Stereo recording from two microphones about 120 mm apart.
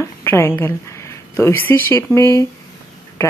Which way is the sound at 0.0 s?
20° left (ahead or behind).